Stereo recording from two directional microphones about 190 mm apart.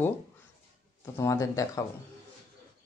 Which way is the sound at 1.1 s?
15° left (ahead or behind).